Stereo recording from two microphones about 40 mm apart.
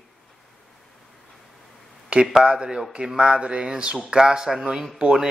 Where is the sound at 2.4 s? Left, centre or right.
Centre.